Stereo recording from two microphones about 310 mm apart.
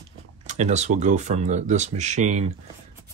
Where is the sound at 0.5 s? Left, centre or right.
Right.